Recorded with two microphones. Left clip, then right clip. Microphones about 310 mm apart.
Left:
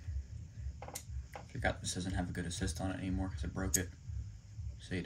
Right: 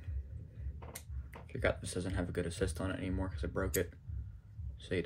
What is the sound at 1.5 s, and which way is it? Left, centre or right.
Speech, centre.